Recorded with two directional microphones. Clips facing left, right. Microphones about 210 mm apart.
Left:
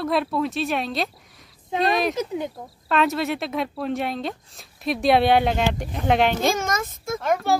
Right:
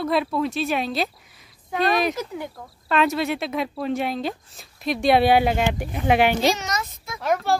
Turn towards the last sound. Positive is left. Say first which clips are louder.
# even
turn(degrees=0)  # may be behind; listen again after turning